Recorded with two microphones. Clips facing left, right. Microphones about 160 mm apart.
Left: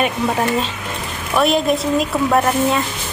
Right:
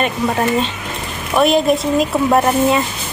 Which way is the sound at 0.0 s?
Centre (ahead or behind).